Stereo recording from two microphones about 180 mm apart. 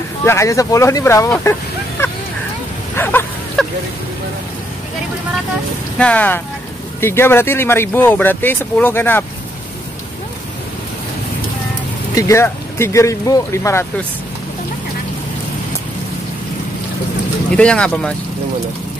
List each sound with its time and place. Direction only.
0.2 s speech: 15° left (ahead or behind)
3.0 s a sound: 10° left (ahead or behind)
5.9 s speech: 5° left (ahead or behind)
12.2 s speech: 15° left (ahead or behind)
17.6 s speech: 5° left (ahead or behind)